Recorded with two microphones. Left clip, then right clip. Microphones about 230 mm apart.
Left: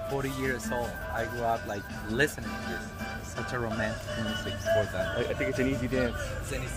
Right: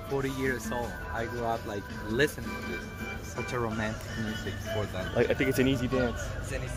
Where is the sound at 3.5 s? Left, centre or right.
Centre.